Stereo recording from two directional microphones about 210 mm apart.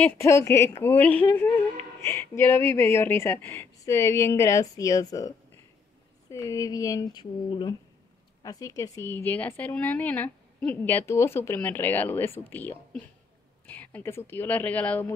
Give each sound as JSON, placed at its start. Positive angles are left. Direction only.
{"t": 0.0, "sound": "a woman's voice", "side_deg": 10}
{"t": 6.3, "sound": "a woman's voice", "side_deg": 15}